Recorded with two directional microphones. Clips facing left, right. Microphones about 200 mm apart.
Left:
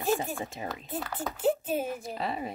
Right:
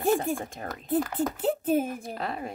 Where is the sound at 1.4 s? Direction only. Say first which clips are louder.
Right 1 dB; 55° right (ahead or behind).